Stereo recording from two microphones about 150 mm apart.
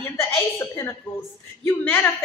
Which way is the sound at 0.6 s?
15° left (ahead or behind).